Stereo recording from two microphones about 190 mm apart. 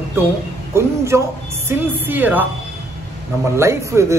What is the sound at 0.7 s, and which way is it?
Speech, 15° right (ahead or behind).